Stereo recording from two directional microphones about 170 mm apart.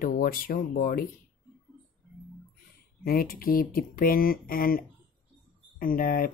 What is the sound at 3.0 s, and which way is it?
Speech, 60° left (ahead or behind).